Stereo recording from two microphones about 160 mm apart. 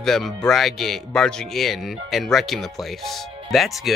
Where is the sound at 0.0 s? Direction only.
Centre (ahead or behind).